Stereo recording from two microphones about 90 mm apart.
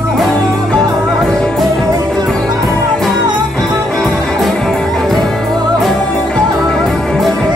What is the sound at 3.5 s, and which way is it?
Music, 5° left (ahead or behind).